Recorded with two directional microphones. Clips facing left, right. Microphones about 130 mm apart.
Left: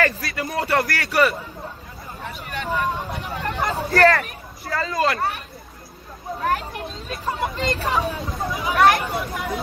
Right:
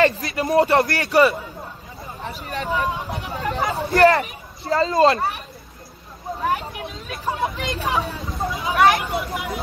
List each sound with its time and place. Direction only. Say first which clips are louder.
0.0 s speech: right 4 dB; 25° right (ahead or behind)
2.4 s speech: right 2 dB; 35° right (ahead or behind)
3.3 s speech: right 2 dB; 5° right (ahead or behind)
3.9 s speech: right 2 dB; 20° right (ahead or behind)
6.4 s speech: even; centre (ahead or behind)